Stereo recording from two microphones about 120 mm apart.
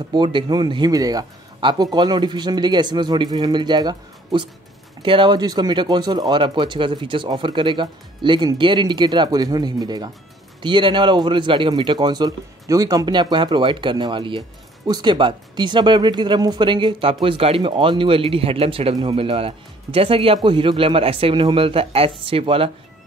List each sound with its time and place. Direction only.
0.1 s speech: 40° right (ahead or behind)